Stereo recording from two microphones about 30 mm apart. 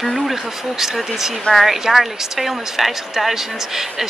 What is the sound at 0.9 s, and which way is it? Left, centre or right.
Speech, centre.